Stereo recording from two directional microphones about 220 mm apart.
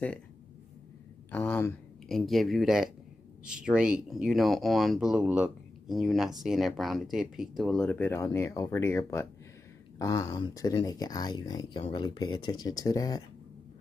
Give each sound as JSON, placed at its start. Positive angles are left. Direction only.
{"t": 1.3, "sound": "speech", "side_deg": 5}